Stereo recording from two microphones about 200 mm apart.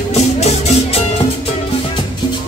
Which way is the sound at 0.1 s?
35° left (ahead or behind).